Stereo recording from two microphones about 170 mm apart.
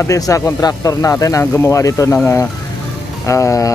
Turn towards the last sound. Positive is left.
turn(degrees=20)  # may be behind; listen again after turning